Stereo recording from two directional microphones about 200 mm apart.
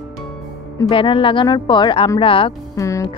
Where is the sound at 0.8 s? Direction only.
25° left (ahead or behind).